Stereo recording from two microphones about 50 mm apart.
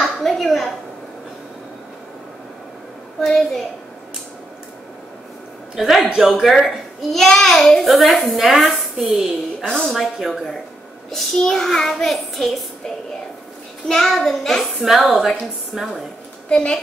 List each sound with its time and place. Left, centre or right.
0.2 s a sound: centre
3.2 s a child's voice: centre
5.8 s a child's voice: centre
9.7 s a child's voice: centre
13.8 s a child's voice: centre
14.8 s a woman's voice: centre
16.4 s a woman's voice: centre